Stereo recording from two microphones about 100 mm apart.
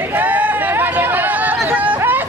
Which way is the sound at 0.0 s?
20° right (ahead or behind).